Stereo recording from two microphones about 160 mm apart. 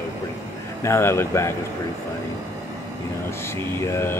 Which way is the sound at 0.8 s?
15° left (ahead or behind).